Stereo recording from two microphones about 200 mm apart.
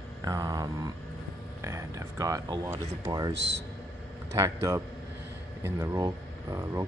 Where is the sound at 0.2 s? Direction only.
15° right (ahead or behind).